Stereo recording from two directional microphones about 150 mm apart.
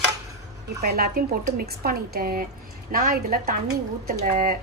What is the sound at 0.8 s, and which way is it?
Speech, 90° right.